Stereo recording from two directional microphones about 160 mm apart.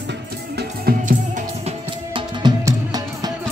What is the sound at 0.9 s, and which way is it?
Music, 75° right (ahead or behind).